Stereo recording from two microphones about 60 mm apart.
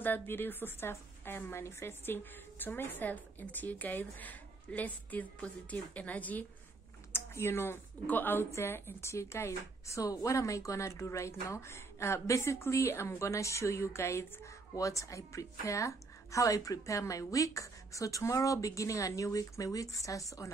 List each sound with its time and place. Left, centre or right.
0.0 s a woman's voice: left
7.1 s a sound: left
8.1 s a woman's voice: left
8.5 s a woman's voice: left
14.8 s a woman's voice: left